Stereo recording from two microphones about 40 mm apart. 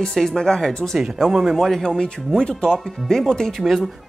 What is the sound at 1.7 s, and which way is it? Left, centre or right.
Speech, centre.